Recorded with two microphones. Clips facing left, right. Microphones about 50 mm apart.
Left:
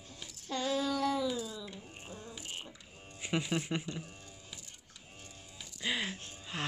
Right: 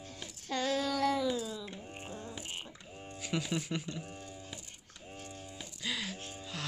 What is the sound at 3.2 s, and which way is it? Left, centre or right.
Speech, left.